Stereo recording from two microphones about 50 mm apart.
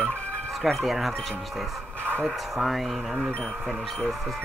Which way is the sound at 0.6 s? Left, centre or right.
Centre.